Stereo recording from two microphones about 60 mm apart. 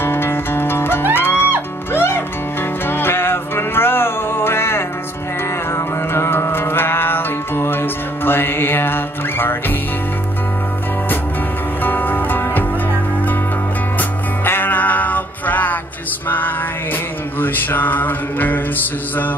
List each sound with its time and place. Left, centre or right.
0.0 s music: left
6.1 s music: left
11.8 s music: left
13.9 s music: left
17.4 s mantra: left